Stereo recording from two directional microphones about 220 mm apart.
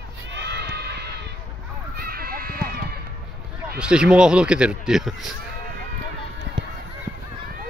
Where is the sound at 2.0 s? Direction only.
45° right (ahead or behind).